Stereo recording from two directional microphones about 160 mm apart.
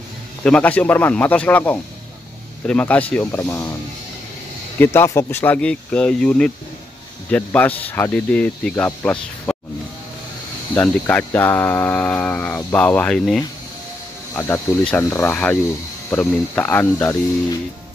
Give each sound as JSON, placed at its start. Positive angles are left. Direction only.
{"t": 0.4, "sound": "speech", "side_deg": 10}
{"t": 4.7, "sound": "speech", "side_deg": 15}
{"t": 10.7, "sound": "speech", "side_deg": 10}
{"t": 14.3, "sound": "speech", "side_deg": 15}